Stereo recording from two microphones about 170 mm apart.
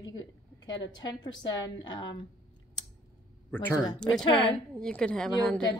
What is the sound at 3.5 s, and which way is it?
Speech, 20° left (ahead or behind).